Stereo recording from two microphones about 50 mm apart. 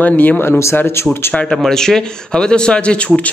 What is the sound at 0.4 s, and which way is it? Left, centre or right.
Speech, left.